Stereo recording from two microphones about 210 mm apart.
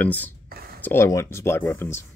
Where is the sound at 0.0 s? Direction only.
5° left (ahead or behind).